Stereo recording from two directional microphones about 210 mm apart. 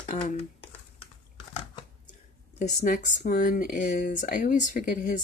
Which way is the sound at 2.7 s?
40° left (ahead or behind).